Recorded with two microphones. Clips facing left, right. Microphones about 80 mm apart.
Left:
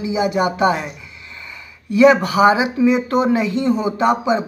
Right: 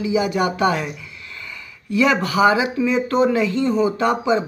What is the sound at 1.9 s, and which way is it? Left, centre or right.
Speech, left.